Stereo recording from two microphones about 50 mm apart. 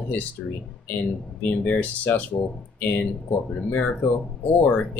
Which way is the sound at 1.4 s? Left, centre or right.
Left.